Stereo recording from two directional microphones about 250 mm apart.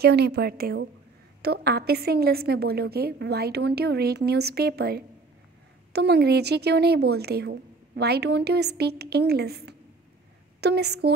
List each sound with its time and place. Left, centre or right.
0.0 s a woman's voice: right